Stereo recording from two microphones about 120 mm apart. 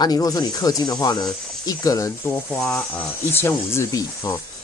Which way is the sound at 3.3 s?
20° left (ahead or behind).